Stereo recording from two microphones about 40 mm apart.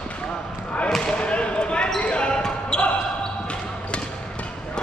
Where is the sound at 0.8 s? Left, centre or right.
Centre.